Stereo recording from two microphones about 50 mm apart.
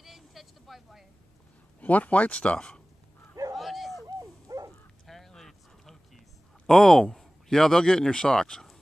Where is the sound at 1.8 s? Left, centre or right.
Left.